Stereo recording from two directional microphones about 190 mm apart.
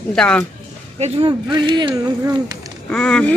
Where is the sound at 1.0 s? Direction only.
25° right (ahead or behind).